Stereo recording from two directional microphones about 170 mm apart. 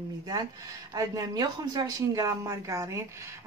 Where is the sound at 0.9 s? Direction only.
20° right (ahead or behind).